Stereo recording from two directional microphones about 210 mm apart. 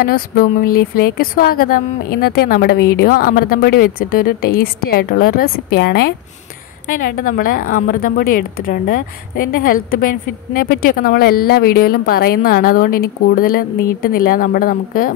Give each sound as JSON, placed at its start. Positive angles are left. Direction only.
{"t": 0.0, "sound": "a woman's voice", "side_deg": 45}